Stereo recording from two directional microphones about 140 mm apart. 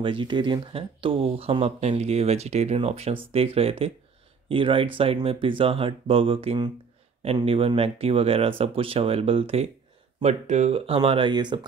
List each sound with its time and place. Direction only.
0.0 s speech: 35° right (ahead or behind)
10.2 s speech: 55° right (ahead or behind); by 11.6 s 35° right (ahead or behind)